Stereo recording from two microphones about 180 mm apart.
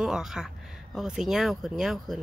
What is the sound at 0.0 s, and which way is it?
Speech, 5° right (ahead or behind).